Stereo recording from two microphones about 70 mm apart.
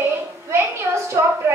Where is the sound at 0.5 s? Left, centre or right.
Right.